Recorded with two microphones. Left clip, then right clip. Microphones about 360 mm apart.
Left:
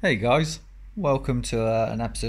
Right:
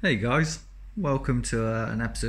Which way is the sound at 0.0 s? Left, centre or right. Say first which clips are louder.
Left 4 dB; centre.